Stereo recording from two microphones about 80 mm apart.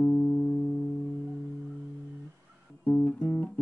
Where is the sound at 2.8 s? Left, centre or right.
Centre.